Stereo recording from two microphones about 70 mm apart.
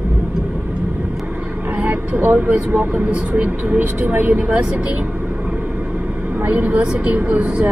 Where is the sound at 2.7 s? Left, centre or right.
Right.